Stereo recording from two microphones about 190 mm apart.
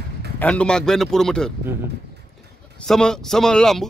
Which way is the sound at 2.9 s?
5° left (ahead or behind).